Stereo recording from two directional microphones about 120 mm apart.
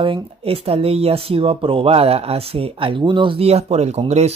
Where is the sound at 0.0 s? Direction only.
50° right (ahead or behind).